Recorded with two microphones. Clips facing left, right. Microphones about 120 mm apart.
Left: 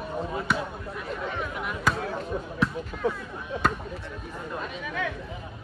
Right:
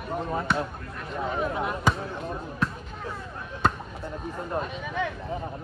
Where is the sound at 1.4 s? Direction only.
30° right (ahead or behind).